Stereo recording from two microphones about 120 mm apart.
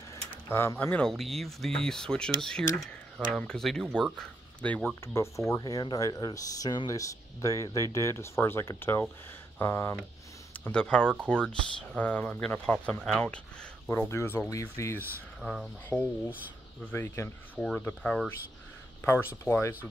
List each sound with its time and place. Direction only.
0.1 s tick-tock: 25° left (ahead or behind)
1.1 s speech: centre (ahead or behind)
5.0 s speech: 20° left (ahead or behind)
10.6 s speech: 10° left (ahead or behind)
13.8 s speech: 20° left (ahead or behind)
15.4 s speech: centre (ahead or behind)
16.8 s speech: 20° left (ahead or behind)
17.6 s speech: 5° left (ahead or behind)
19.0 s speech: 20° left (ahead or behind)